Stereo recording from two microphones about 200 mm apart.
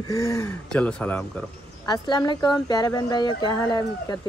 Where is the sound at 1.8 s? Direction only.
20° left (ahead or behind).